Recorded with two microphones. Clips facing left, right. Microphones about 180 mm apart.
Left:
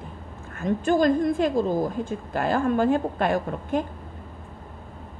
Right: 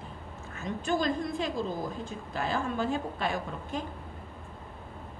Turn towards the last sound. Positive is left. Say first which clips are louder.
# left 9 dB
turn(degrees=55)  # may be behind; listen again after turning